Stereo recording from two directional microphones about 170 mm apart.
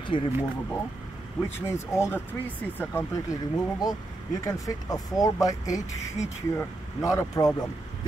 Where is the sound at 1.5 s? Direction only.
15° left (ahead or behind).